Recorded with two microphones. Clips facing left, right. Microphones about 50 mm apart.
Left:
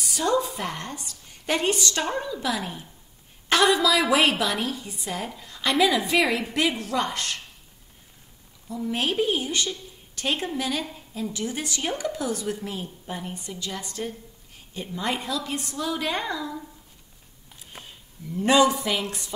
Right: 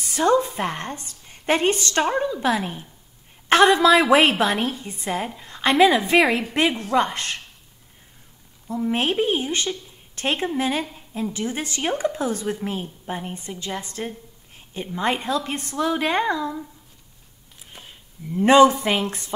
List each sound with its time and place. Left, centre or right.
0.0 s a woman's voice: right
8.6 s a woman's voice: right
18.3 s a woman's voice: right